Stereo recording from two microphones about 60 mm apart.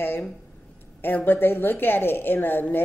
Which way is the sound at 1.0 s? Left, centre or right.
Left.